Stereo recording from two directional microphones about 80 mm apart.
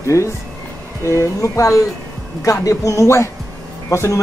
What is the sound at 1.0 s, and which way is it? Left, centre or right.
Speech, left.